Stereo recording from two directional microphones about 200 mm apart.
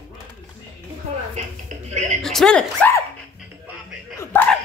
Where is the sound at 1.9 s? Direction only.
35° right (ahead or behind).